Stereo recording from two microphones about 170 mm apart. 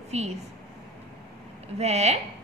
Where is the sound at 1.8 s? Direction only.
40° right (ahead or behind).